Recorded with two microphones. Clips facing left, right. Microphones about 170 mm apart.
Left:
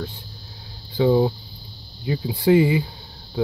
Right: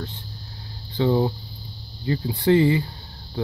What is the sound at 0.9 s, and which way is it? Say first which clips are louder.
Speech: left 3 dB; 10° left (ahead or behind).